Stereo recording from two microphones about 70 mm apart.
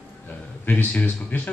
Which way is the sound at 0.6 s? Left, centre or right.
Left.